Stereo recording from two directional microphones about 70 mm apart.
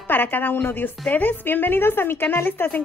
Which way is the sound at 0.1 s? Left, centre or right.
Left.